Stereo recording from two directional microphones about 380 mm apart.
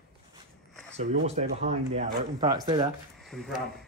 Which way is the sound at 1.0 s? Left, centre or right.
Centre.